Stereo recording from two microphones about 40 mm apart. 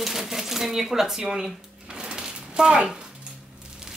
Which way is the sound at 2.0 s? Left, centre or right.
Centre.